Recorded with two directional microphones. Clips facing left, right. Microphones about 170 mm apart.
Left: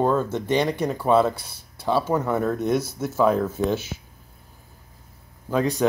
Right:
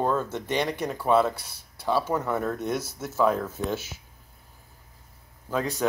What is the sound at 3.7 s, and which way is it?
Speech, 5° right (ahead or behind).